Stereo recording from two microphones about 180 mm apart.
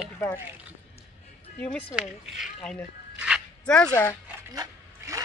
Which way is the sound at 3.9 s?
15° left (ahead or behind).